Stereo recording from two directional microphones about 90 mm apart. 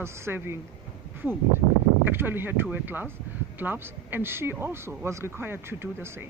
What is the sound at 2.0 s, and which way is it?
Speech, 25° right (ahead or behind).